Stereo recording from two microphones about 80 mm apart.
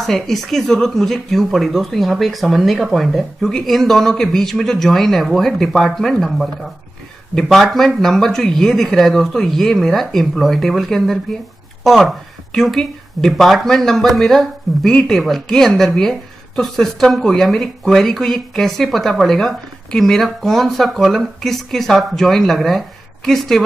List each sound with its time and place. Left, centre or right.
0.0 s speech: centre